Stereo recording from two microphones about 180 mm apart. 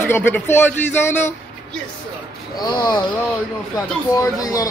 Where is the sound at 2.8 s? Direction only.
25° left (ahead or behind).